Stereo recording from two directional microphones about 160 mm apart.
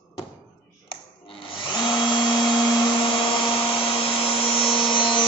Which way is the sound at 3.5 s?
35° left (ahead or behind).